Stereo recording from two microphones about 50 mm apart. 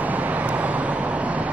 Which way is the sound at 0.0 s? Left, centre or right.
Right.